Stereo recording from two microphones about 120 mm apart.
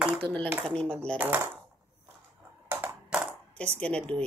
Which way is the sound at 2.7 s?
15° right (ahead or behind).